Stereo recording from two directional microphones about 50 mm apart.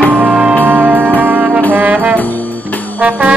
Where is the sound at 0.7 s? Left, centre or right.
Right.